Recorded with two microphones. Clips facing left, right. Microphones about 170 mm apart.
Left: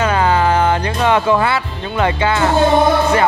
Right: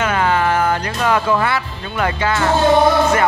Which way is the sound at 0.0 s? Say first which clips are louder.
Left 2 dB; 30° left (ahead or behind).